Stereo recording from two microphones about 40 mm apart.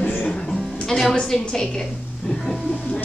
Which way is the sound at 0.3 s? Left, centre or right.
Centre.